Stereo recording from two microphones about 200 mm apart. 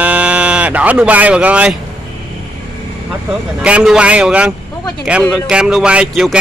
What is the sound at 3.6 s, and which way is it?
Speech, 5° right (ahead or behind).